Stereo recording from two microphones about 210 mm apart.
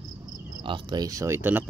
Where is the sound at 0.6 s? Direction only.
20° right (ahead or behind).